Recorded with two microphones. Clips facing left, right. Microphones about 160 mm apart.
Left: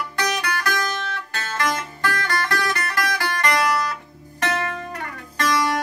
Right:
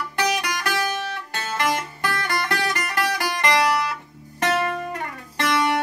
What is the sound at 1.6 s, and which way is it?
Guitar, 15° right (ahead or behind).